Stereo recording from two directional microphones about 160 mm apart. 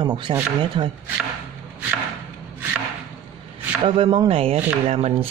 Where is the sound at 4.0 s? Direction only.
35° right (ahead or behind).